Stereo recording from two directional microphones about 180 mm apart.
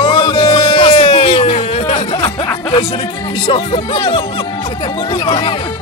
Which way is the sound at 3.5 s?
30° left (ahead or behind).